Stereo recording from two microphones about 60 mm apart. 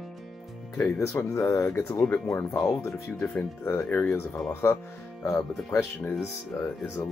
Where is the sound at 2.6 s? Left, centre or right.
Left.